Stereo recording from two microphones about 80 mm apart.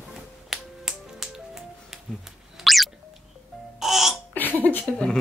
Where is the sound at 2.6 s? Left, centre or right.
Centre.